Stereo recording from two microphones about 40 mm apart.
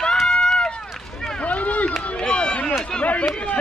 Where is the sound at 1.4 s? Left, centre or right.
Left.